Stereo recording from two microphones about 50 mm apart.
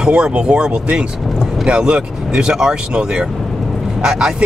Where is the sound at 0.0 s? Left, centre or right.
Right.